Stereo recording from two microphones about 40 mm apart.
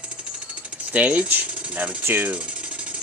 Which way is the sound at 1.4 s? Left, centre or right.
Right.